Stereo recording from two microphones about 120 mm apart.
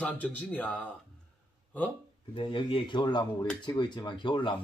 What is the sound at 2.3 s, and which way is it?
Speech, 45° left (ahead or behind).